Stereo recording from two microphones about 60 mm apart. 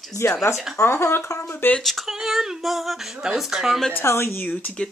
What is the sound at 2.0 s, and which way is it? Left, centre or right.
Speech, centre.